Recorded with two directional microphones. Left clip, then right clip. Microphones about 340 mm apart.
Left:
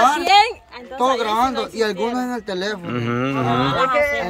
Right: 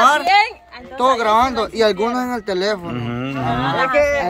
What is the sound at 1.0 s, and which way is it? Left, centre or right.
Speech, centre.